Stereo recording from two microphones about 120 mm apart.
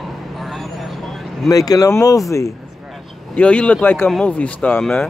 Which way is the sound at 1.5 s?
30° left (ahead or behind).